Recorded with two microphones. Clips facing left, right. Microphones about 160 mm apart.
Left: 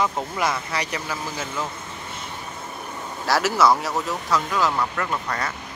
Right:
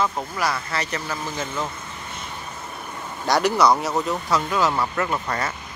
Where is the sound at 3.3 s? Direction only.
Centre (ahead or behind).